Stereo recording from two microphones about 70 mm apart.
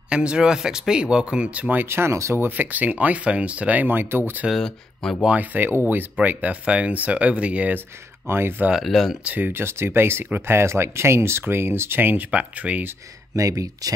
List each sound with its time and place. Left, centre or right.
0.1 s speech: centre
1.9 s speech: right
2.4 s speech: right
4.5 s speech: centre
5.2 s speech: right
8.3 s speech: right
8.7 s speech: centre
9.2 s speech: right
9.5 s speech: right
12.3 s speech: centre
13.3 s speech: right